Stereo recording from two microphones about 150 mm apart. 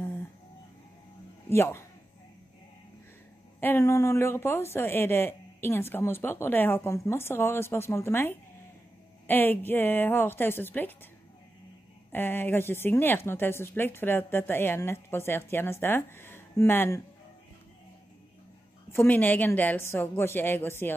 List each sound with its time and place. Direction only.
1.5 s speech: 15° left (ahead or behind)
3.6 s speech: 15° left (ahead or behind)
12.1 s speech: 15° left (ahead or behind)
18.9 s speech: 15° left (ahead or behind)